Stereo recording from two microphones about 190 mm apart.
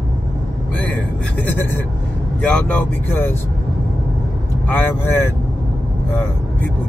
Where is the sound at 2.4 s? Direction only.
5° left (ahead or behind).